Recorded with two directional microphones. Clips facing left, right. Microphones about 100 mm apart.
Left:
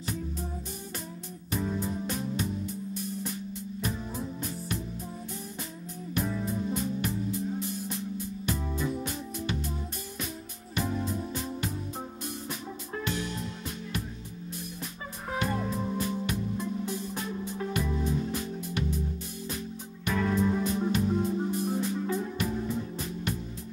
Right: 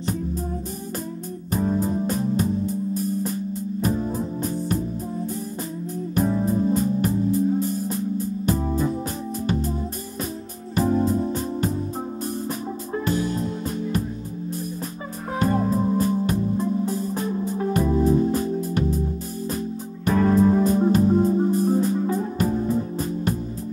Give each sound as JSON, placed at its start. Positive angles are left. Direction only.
{"t": 1.5, "sound": "music", "side_deg": -45}
{"t": 6.1, "sound": "music", "side_deg": -40}
{"t": 12.9, "sound": "music", "side_deg": -35}
{"t": 15.3, "sound": "music", "side_deg": -40}
{"t": 20.1, "sound": "music", "side_deg": -40}